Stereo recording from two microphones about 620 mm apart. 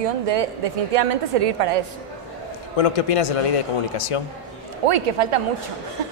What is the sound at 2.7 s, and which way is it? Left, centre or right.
A man's voice, left.